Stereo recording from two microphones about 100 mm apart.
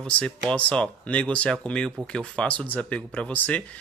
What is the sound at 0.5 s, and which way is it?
Speech, 10° left (ahead or behind).